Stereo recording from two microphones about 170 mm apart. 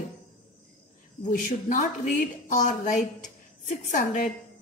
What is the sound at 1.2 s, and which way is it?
A woman's voice, 45° left (ahead or behind).